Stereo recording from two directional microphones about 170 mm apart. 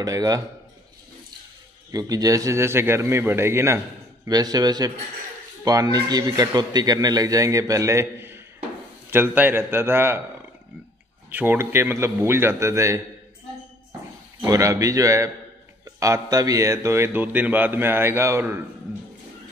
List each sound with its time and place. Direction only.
0.0 s speech: 20° right (ahead or behind)
1.9 s speech: 20° right (ahead or behind)
11.2 s speech: 10° right (ahead or behind)
14.4 s speech: 20° right (ahead or behind)